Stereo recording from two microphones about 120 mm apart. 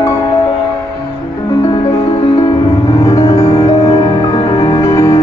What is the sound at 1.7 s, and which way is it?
Music, 25° left (ahead or behind).